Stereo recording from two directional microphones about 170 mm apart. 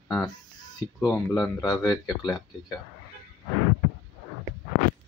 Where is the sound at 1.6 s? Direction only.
25° left (ahead or behind).